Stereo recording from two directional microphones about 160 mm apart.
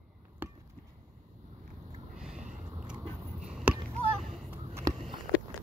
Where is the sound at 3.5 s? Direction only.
5° right (ahead or behind).